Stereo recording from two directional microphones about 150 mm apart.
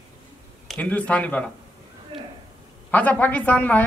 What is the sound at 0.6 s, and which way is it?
Speech, 10° left (ahead or behind).